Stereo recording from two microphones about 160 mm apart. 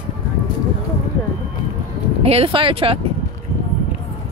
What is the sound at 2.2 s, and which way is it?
Speech, 40° right (ahead or behind).